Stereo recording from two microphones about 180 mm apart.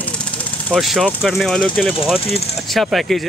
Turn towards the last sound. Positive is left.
turn(degrees=0)  # may be behind; listen again after turning